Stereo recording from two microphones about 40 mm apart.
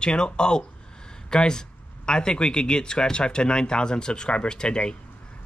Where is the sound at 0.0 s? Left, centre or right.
Left.